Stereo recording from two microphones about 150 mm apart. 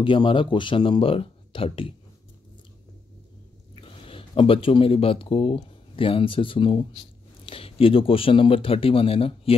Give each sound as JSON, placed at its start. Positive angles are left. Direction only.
{"t": 0.0, "sound": "speech", "side_deg": 35}
{"t": 3.7, "sound": "speech", "side_deg": 35}